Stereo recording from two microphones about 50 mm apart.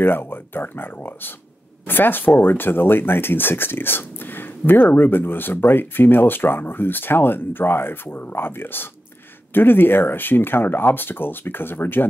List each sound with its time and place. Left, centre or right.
0.0 s speech: left